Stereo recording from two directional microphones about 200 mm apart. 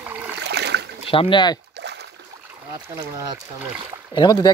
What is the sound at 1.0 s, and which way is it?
Speech, 30° left (ahead or behind).